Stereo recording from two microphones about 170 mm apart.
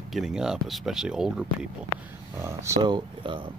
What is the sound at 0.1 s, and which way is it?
Speech, centre (ahead or behind).